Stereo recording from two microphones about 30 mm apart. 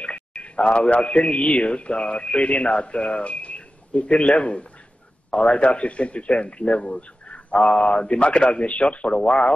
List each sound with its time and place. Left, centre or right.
0.0 s a sound: left
1.0 s a man's voice: left
4.1 s a man's voice: left
7.7 s a man's voice: left